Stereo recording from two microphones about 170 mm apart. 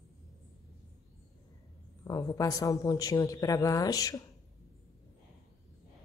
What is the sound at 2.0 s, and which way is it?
Speech, 20° left (ahead or behind).